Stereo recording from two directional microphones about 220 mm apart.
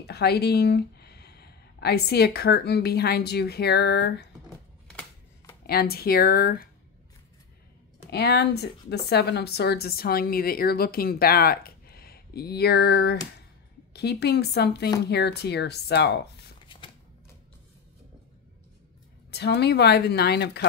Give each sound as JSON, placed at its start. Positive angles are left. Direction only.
{"t": 0.0, "sound": "speech", "side_deg": 45}
{"t": 5.7, "sound": "speech", "side_deg": 45}
{"t": 8.1, "sound": "speech", "side_deg": 50}
{"t": 19.3, "sound": "speech", "side_deg": 50}